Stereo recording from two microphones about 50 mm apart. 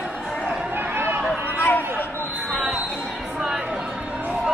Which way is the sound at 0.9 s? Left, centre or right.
Right.